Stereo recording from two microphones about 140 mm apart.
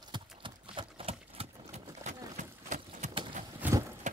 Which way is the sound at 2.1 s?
55° right (ahead or behind).